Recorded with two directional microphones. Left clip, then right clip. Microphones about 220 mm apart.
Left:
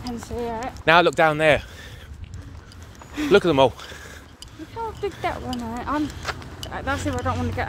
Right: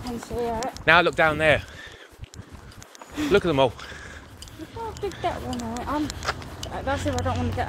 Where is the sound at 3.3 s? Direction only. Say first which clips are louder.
Left 4 dB; 45° left (ahead or behind).